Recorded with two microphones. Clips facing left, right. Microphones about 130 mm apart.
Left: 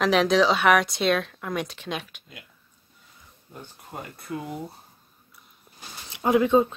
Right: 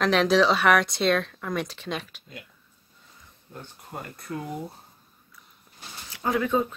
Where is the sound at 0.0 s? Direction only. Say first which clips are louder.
Left 1 dB; centre (ahead or behind).